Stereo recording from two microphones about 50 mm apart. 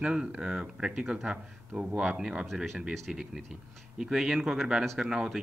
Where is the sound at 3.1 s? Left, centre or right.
Centre.